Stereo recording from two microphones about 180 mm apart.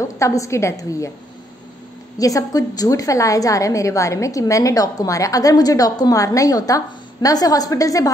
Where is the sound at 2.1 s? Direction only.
20° left (ahead or behind).